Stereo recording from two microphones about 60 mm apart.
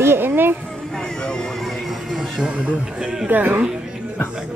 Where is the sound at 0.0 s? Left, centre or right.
Right.